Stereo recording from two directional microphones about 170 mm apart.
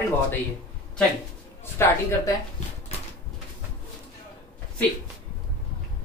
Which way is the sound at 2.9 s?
40° left (ahead or behind).